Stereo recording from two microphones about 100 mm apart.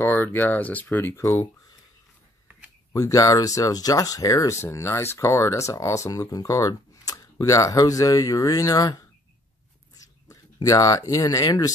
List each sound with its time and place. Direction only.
0.0 s speech: 20° left (ahead or behind)
2.9 s speech: 35° left (ahead or behind)
9.9 s speech: 35° left (ahead or behind)